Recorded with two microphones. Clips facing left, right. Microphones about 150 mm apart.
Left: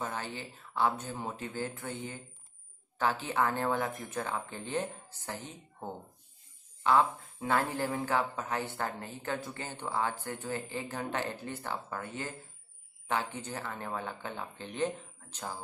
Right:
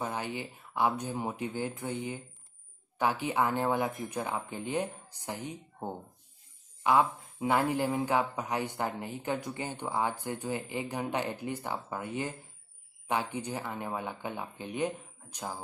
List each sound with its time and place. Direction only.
0.0 s a man's voice: 15° right (ahead or behind)